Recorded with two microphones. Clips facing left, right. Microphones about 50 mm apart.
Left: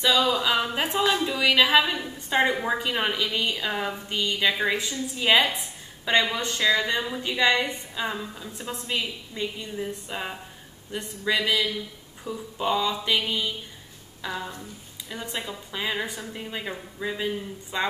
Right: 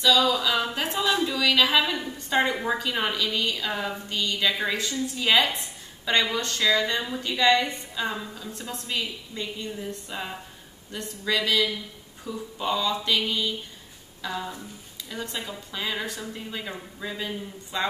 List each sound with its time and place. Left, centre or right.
0.0 s a woman's voice: left